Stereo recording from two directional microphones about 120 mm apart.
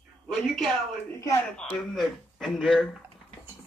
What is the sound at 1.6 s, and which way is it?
Speech, 5° left (ahead or behind).